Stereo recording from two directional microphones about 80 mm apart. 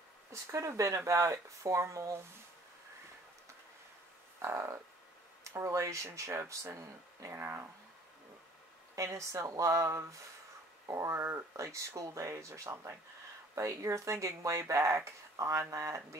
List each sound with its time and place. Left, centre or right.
0.3 s speech: right
4.4 s speech: right
8.9 s speech: right